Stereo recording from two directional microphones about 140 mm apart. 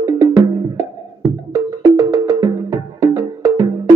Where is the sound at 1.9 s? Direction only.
25° right (ahead or behind).